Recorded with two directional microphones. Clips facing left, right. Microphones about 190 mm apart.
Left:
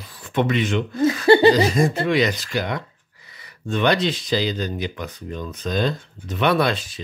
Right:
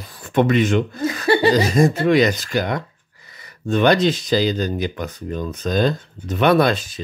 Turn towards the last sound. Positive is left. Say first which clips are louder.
# right 4 dB
turn(degrees=-45)  # may be behind; listen again after turning